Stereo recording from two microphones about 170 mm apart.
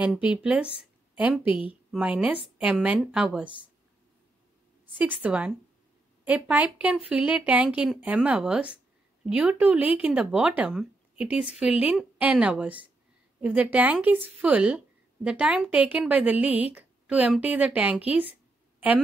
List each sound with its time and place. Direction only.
0.0 s speech: 5° right (ahead or behind)
1.4 s a woman's voice: 30° left (ahead or behind)
1.9 s speech: 5° right (ahead or behind)
4.9 s speech: 10° right (ahead or behind)